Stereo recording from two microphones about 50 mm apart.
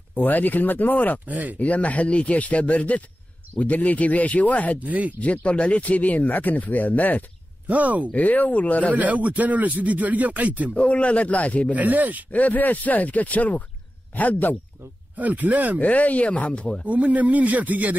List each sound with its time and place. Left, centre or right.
0.1 s speech: left
1.2 s speech: right
1.6 s speech: left
4.8 s speech: right
5.2 s speech: left
7.6 s speech: right
8.1 s speech: left
8.9 s speech: right
10.8 s speech: left
11.7 s speech: right
12.3 s speech: left
15.1 s speech: right
15.8 s speech: left
16.8 s speech: right